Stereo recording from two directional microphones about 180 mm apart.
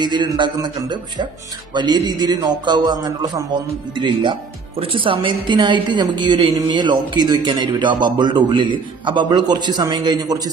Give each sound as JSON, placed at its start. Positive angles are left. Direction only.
{"t": 0.0, "sound": "a woman's voice", "side_deg": -25}